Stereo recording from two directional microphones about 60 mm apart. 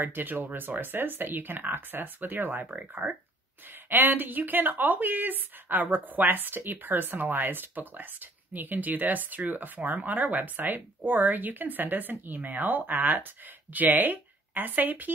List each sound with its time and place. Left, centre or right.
0.0 s speech: right
3.9 s speech: right